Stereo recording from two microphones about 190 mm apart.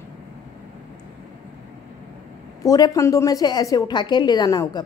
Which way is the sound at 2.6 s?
20° left (ahead or behind).